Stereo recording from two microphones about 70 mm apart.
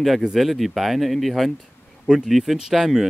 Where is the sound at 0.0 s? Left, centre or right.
Centre.